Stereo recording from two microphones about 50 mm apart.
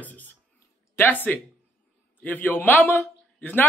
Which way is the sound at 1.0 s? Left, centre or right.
Left.